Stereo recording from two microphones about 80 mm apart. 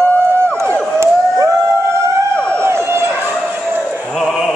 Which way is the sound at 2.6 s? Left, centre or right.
Right.